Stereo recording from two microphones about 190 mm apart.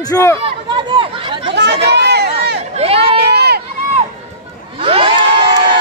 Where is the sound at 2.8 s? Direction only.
30° right (ahead or behind).